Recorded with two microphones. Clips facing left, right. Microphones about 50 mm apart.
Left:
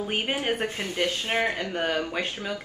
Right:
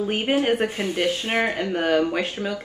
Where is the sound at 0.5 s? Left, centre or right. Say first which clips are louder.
Right 5 dB; centre.